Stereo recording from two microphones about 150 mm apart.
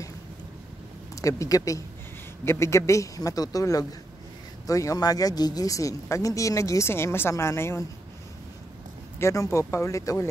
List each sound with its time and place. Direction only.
1.1 s speech: 20° left (ahead or behind)
9.2 s speech: 20° left (ahead or behind)